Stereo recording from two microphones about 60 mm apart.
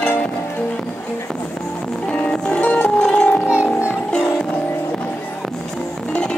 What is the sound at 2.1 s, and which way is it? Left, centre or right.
Music, centre.